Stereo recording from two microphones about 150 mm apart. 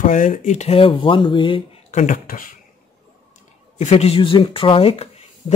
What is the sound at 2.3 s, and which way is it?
Speech, 65° left (ahead or behind).